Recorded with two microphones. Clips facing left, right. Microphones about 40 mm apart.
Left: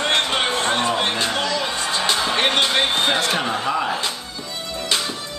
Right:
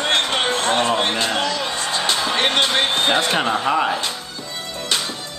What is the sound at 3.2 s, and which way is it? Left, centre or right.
Speech, right.